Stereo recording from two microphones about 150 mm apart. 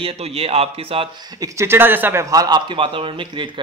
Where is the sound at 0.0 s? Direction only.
40° right (ahead or behind).